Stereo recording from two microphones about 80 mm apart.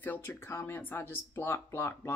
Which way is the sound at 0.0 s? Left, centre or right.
Left.